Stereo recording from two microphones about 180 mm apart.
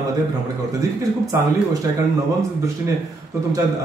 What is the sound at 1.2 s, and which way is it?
Speech, 20° right (ahead or behind).